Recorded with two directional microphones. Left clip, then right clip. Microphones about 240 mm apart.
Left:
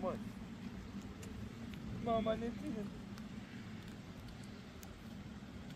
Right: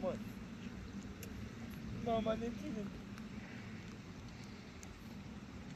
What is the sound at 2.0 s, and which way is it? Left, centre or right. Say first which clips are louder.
Speech: left 1 dB; centre.